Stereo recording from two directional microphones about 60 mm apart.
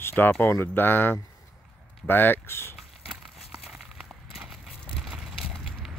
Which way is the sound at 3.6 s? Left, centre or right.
Centre.